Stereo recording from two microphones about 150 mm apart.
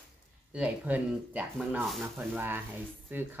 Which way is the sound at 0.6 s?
10° right (ahead or behind).